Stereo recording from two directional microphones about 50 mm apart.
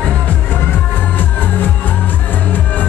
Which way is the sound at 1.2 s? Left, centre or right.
Left.